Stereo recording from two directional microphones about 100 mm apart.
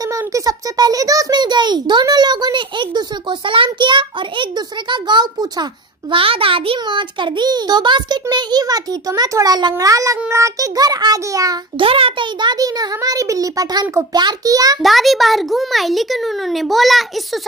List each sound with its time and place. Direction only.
0.1 s a child's voice: 35° right (ahead or behind)
11.8 s a child's voice: 65° right (ahead or behind); by 14.8 s 40° right (ahead or behind)
14.8 s a child's voice: centre (ahead or behind)